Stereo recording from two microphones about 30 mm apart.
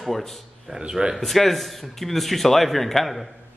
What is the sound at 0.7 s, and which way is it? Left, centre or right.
Speech, right.